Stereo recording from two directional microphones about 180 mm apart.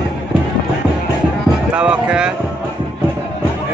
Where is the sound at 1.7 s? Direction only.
5° right (ahead or behind).